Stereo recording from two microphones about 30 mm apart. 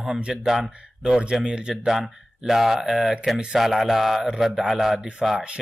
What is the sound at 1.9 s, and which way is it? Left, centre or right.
Speech, centre.